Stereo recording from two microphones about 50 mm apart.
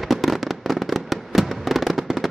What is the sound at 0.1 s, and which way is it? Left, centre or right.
Fireworks, centre.